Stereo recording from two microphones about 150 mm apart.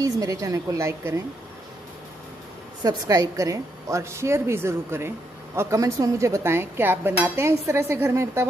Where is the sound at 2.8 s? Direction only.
25° right (ahead or behind).